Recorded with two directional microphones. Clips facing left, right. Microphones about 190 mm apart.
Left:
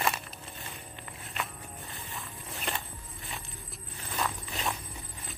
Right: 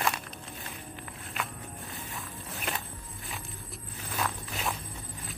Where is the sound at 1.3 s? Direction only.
Centre (ahead or behind).